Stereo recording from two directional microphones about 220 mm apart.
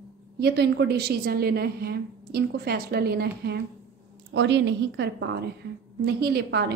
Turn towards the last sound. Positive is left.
turn(degrees=-50)  # may be behind; listen again after turning